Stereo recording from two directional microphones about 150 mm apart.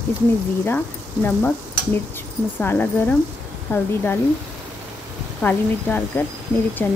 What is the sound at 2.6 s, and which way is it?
Speech, 10° left (ahead or behind).